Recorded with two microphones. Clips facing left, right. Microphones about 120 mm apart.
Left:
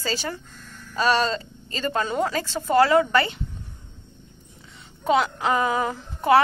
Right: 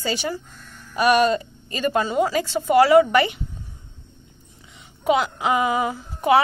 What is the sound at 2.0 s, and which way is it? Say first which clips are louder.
Speech: right 3 dB; 5° right (ahead or behind).